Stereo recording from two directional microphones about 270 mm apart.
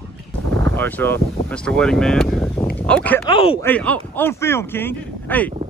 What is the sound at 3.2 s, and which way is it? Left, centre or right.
Speech, centre.